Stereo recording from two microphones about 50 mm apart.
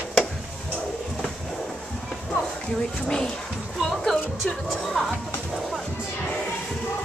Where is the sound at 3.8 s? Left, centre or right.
Centre.